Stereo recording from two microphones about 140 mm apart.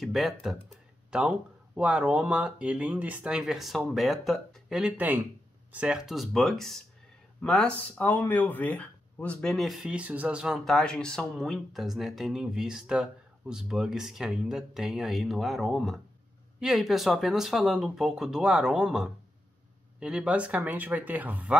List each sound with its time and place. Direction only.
0.0 s speech: centre (ahead or behind)